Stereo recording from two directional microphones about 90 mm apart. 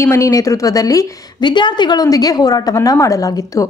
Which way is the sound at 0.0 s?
35° left (ahead or behind).